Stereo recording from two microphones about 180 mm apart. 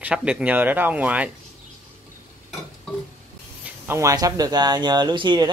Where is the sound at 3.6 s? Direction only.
15° right (ahead or behind).